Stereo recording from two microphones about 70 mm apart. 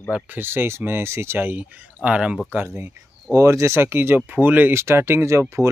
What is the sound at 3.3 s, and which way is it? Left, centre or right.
Speech, right.